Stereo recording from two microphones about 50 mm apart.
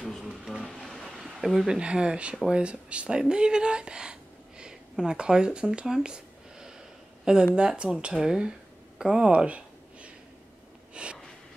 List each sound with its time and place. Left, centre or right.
0.2 s music: centre
0.7 s a sound: centre
1.7 s speech: centre
5.9 s a sound: centre
7.5 s speech: centre
11.0 s speech: right